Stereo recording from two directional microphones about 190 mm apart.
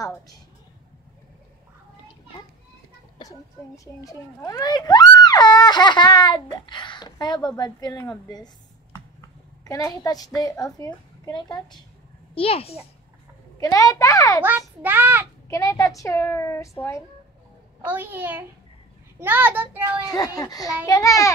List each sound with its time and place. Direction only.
3.2 s a child's voice: 20° left (ahead or behind)
9.7 s a child's voice: 15° left (ahead or behind)
13.6 s a child's voice: 15° left (ahead or behind)
14.8 s a child's voice: 10° right (ahead or behind)
15.4 s a child's voice: 15° left (ahead or behind)
17.8 s a child's voice: 10° right (ahead or behind)
20.1 s a child's voice: 20° left (ahead or behind)